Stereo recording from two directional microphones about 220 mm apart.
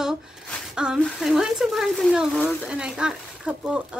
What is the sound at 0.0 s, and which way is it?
Speech, 5° right (ahead or behind).